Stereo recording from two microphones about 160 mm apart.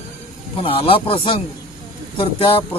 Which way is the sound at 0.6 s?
35° left (ahead or behind).